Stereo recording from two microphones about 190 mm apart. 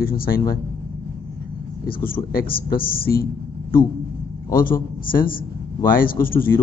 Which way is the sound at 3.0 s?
50° left (ahead or behind).